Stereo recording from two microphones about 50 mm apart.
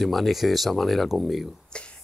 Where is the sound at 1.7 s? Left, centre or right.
Left.